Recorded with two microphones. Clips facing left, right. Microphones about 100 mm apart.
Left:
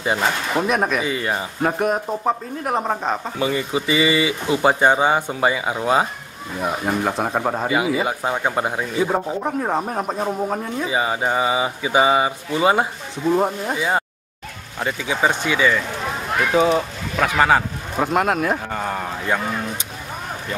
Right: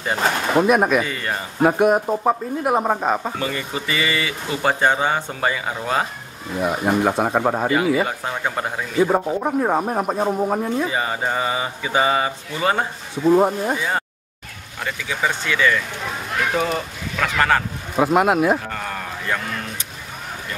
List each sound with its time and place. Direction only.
0.6 s speech: 5° right (ahead or behind)
1.0 s speech: 15° left (ahead or behind)
1.6 s speech: 10° right (ahead or behind)
3.3 s speech: 15° left (ahead or behind)
6.6 s speech: 5° right (ahead or behind)
7.7 s speech: 15° left (ahead or behind)
9.1 s speech: 5° right (ahead or behind)
10.9 s speech: 10° left (ahead or behind)
13.1 s speech: 5° right (ahead or behind)
13.7 s speech: 15° left (ahead or behind)
17.9 s speech: 5° right (ahead or behind)
18.7 s a sound: 15° left (ahead or behind)